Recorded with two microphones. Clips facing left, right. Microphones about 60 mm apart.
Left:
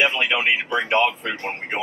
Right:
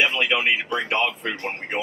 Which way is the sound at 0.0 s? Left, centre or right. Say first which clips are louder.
Left 1 dB; left.